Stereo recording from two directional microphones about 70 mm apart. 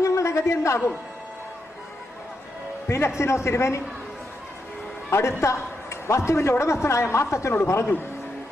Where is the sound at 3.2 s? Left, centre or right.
Left.